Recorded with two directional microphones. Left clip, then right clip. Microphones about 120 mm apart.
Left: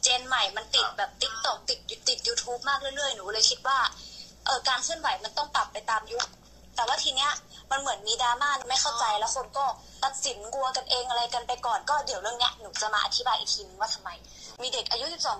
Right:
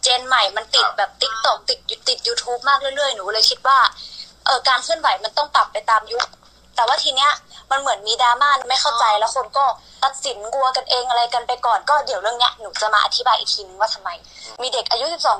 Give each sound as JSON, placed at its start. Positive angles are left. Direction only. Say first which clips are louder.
{"t": 0.0, "sound": "a woman's voice", "louder": "right 9 dB", "side_deg": -45}